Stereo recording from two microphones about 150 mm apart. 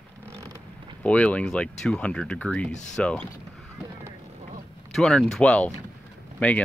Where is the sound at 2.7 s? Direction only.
55° left (ahead or behind).